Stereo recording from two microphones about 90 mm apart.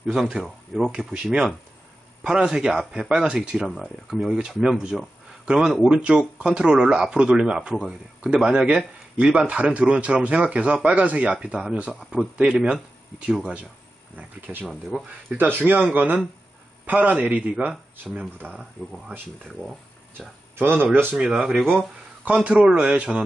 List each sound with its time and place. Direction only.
0.0 s speech: 5° right (ahead or behind)
2.2 s speech: 10° right (ahead or behind)
14.7 s speech: centre (ahead or behind)
15.0 s speech: 20° right (ahead or behind)
18.5 s speech: 5° left (ahead or behind)
20.5 s speech: 25° right (ahead or behind)
21.2 s speech: 10° right (ahead or behind)